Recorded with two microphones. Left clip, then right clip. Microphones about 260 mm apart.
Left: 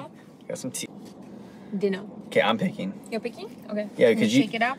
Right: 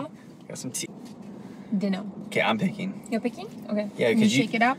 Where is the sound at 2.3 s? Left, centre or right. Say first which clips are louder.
Left 2 dB; centre.